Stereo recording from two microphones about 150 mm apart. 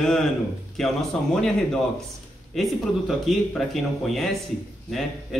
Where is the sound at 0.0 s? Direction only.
5° left (ahead or behind).